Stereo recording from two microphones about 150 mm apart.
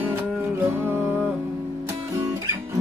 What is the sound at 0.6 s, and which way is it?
Music, 15° right (ahead or behind).